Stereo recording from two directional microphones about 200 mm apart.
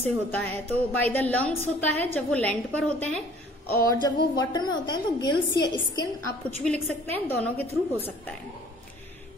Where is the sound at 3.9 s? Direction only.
20° left (ahead or behind).